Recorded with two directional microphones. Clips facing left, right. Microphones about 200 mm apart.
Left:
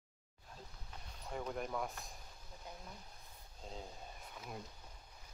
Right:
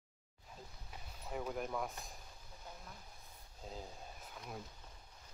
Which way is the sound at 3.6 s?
Centre (ahead or behind).